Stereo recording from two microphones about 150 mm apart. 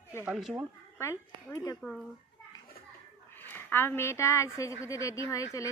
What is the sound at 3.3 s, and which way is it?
Speech, 15° left (ahead or behind).